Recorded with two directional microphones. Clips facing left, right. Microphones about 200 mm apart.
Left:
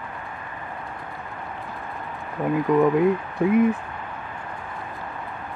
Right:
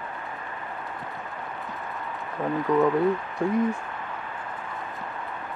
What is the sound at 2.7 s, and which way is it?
Speech, 20° left (ahead or behind).